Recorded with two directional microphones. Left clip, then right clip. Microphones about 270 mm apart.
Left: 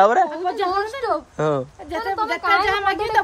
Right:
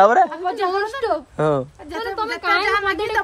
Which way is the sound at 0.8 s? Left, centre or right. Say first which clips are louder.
Right 1 dB; right.